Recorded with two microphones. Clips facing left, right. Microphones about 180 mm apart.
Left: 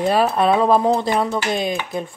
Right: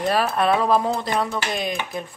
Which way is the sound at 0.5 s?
30° left (ahead or behind).